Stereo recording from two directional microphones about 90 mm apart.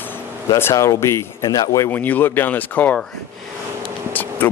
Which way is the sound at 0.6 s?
30° left (ahead or behind).